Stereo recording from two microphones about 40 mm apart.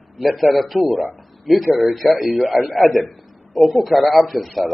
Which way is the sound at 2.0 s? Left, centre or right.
Centre.